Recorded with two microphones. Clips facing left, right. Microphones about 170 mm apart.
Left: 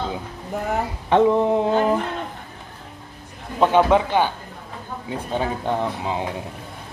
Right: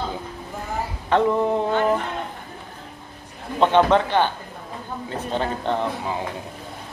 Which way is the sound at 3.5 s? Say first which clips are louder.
Left 1 dB; 10° left (ahead or behind).